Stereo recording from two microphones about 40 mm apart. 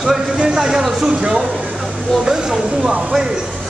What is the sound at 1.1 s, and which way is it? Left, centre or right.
Speech, right.